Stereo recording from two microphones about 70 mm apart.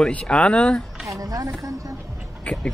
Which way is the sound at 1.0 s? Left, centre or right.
Right.